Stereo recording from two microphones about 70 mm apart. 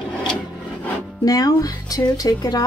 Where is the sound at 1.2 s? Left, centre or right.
Left.